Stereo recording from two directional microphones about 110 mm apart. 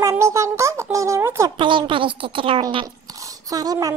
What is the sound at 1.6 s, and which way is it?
A woman's voice, 50° right (ahead or behind).